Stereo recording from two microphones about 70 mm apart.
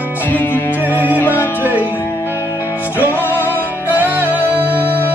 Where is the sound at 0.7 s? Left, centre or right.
Right.